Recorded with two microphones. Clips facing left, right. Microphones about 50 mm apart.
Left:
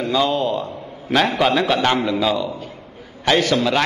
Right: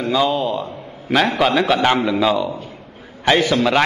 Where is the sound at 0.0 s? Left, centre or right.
Centre.